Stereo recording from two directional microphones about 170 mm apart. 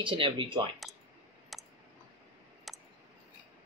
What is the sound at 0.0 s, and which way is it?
Speech, 30° right (ahead or behind).